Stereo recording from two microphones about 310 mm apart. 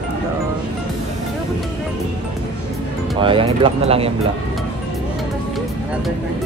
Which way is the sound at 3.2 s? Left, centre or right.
Centre.